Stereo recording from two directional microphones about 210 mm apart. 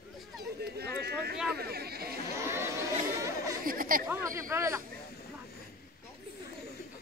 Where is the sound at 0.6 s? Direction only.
50° right (ahead or behind).